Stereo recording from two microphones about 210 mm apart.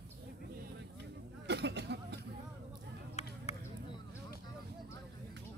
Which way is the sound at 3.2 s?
30° left (ahead or behind).